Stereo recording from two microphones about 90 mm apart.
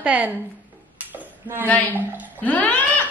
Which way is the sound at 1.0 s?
25° right (ahead or behind).